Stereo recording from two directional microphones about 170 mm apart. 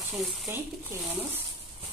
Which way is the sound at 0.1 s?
Centre (ahead or behind).